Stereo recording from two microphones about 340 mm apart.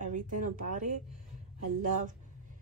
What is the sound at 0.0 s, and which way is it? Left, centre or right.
Speech, right.